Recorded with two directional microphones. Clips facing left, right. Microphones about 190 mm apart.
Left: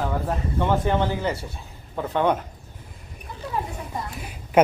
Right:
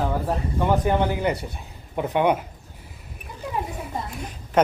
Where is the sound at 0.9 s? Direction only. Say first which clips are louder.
Right 1 dB; 15° right (ahead or behind).